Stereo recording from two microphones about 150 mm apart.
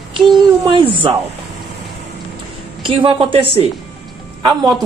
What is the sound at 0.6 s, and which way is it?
Speech, 35° right (ahead or behind).